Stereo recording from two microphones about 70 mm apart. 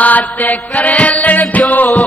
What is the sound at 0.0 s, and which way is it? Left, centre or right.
Music, left.